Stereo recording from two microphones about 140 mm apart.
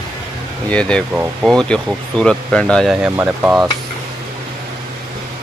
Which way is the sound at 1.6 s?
5° left (ahead or behind).